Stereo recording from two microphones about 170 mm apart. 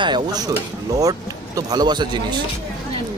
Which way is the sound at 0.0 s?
25° right (ahead or behind).